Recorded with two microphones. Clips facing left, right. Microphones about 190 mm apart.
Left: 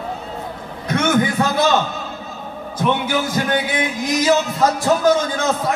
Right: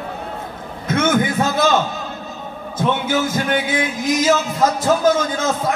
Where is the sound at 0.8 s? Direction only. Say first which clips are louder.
Even; 25° right (ahead or behind).